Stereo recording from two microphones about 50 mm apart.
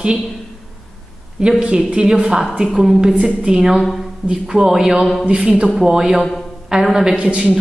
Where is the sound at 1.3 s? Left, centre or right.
Centre.